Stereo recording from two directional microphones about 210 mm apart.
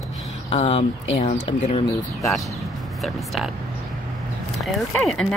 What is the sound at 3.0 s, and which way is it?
Speech, centre (ahead or behind).